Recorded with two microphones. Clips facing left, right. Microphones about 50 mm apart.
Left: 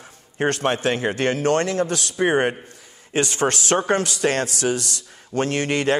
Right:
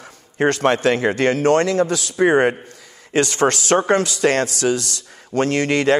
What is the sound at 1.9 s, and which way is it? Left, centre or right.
Speech, left.